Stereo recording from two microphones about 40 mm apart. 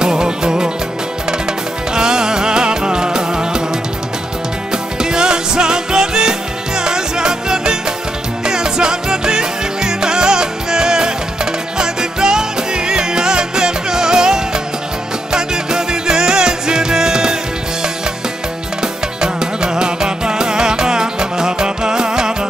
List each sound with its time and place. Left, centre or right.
0.0 s music: centre
2.0 s music: centre
4.9 s music: centre
18.8 s music: centre